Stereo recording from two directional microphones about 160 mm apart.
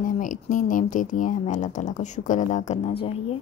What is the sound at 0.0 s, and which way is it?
Speech, 55° left (ahead or behind).